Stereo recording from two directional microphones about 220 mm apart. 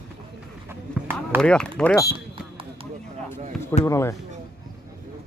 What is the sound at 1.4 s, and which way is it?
Speech, 5° left (ahead or behind).